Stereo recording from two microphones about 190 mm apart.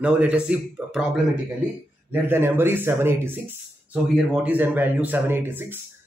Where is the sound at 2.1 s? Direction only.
10° right (ahead or behind).